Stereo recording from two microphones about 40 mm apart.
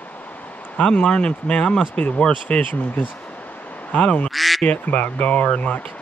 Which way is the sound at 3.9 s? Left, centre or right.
Left.